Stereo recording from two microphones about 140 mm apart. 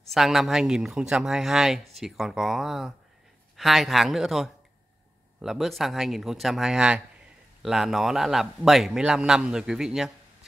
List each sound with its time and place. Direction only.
0.1 s a man's voice: centre (ahead or behind)